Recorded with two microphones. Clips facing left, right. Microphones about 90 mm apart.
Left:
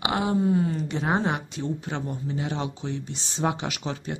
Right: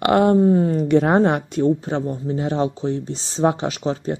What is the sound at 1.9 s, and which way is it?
Speech, 35° right (ahead or behind).